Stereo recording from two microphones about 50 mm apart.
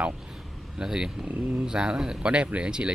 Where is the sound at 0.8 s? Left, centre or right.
Centre.